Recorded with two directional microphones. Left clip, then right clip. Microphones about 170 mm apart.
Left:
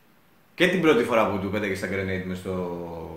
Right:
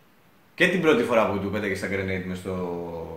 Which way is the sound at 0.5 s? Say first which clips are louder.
Even; 10° left (ahead or behind).